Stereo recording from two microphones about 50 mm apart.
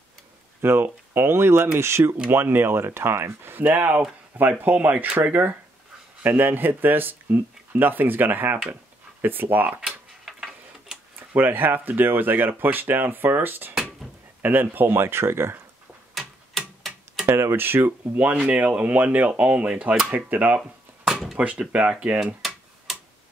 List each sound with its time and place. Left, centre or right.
0.6 s speech: right
2.3 s speech: right
3.5 s speech: right
9.8 s tick-tock: centre
11.3 s speech: right
16.2 s tick-tock: centre
17.3 s speech: right
18.1 s speech: right
20.5 s a sound: centre
21.4 s speech: right